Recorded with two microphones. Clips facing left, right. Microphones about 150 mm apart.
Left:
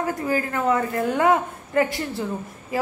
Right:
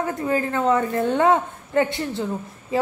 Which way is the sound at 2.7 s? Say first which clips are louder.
Right 3 dB; 25° right (ahead or behind).